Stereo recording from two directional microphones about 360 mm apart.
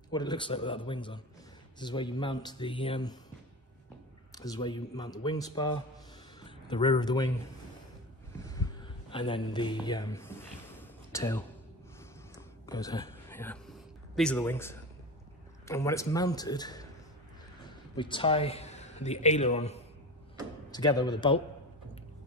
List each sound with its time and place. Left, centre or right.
0.1 s a man's voice: centre
4.3 s a man's voice: centre
9.1 s speech: centre
12.4 s a sound: centre
15.6 s a man's voice: centre
17.9 s a man's voice: centre